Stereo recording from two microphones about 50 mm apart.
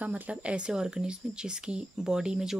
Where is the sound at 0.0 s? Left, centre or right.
Right.